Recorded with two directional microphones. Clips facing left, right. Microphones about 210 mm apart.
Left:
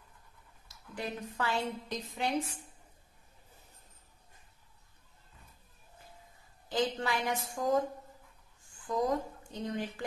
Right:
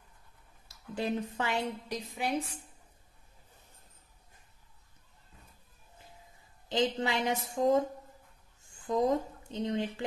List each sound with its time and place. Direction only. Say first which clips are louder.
0.9 s a woman's voice: right 5 dB; 25° right (ahead or behind)
1.9 s a woman's voice: even; 10° right (ahead or behind)
6.7 s a woman's voice: right 2 dB; 20° right (ahead or behind)